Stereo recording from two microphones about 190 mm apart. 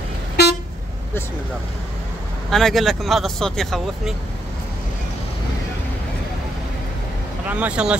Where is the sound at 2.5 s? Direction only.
Centre (ahead or behind).